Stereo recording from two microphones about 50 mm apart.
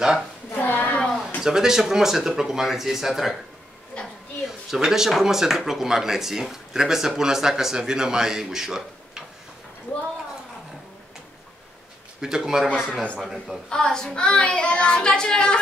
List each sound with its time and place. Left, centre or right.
0.5 s a sound: left
1.4 s speech: centre
3.9 s a sound: left
4.6 s speech: centre
12.2 s speech: centre
13.7 s child singing: centre